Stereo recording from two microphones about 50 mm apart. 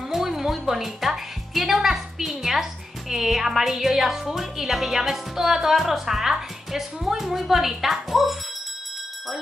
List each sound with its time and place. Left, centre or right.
0.1 s a woman's voice: centre